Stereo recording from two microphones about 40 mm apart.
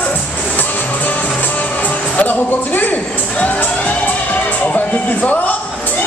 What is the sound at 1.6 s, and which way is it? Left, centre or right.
Music, left.